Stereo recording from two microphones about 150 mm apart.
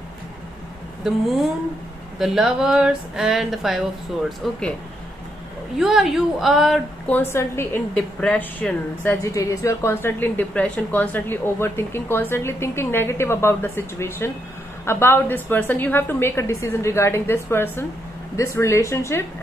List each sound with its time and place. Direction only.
2.1 s speech: 5° right (ahead or behind)
5.8 s speech: centre (ahead or behind)
7.1 s a woman's voice: 15° left (ahead or behind)